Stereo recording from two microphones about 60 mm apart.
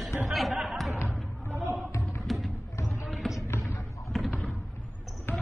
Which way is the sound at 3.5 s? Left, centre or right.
Left.